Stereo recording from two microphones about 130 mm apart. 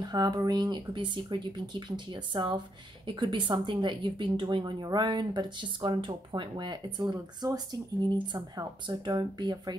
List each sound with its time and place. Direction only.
0.0 s speech: 30° right (ahead or behind)